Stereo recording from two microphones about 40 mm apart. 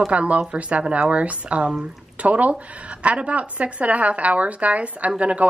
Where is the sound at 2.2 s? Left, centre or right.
Right.